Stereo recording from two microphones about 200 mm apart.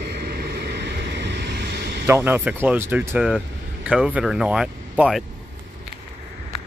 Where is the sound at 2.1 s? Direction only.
10° right (ahead or behind).